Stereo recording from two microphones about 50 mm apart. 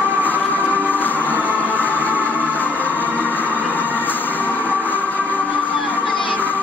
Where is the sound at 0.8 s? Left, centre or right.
Left.